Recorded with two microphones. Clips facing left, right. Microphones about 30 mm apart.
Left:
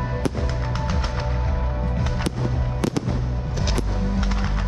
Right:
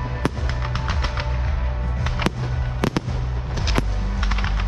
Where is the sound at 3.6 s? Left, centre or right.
Centre.